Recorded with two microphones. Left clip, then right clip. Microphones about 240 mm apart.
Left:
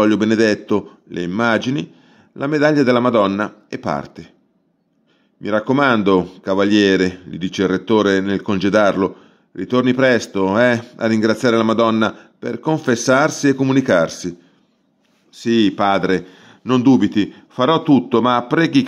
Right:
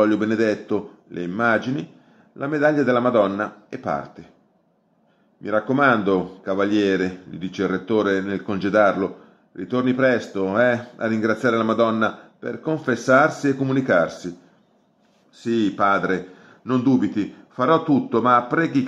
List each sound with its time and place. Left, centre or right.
0.0 s speech: left
5.4 s speech: left
15.3 s speech: left